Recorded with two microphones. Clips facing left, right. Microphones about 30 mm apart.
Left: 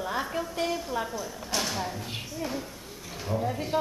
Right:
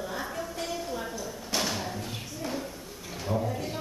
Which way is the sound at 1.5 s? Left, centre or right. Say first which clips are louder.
Even; centre.